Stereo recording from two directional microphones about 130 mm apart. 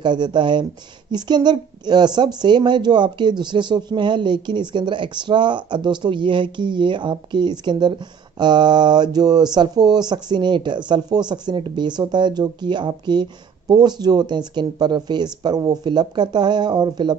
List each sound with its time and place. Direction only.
0.0 s a woman's voice: 35° right (ahead or behind)